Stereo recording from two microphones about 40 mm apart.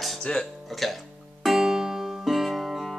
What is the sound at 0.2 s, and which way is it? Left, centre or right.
Speech, left.